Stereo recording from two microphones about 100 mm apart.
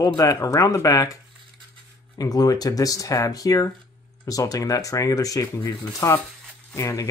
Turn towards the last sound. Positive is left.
turn(degrees=30)  # may be behind; listen again after turning